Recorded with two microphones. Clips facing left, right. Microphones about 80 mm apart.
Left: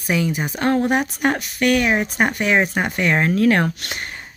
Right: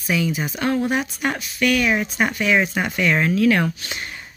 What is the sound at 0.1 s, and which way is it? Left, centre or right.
Speech, left.